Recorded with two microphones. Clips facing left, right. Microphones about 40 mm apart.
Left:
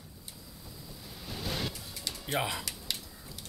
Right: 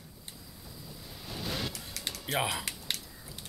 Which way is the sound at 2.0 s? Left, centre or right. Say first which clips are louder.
Right 3 dB; right.